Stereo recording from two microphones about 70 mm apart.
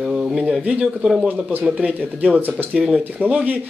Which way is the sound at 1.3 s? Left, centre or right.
Right.